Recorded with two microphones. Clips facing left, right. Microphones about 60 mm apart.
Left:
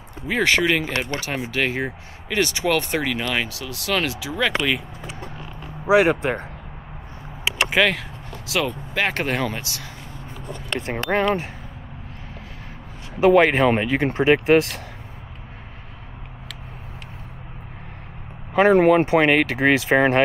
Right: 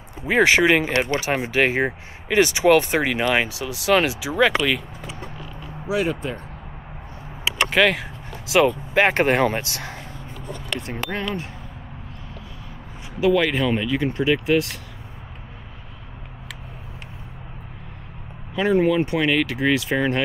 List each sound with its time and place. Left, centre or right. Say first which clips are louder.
0.3 s speech: right 3 dB; centre
4.5 s speech: right 1 dB; centre
5.9 s speech: left 6 dB; left
7.7 s speech: right 1 dB; centre
8.0 s speech: right 1 dB; right
10.9 s speech: left 8 dB; left
13.2 s speech: left 4 dB; left
18.5 s speech: left 5 dB; left